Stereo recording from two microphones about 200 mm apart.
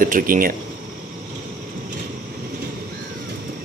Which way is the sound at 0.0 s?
45° right (ahead or behind).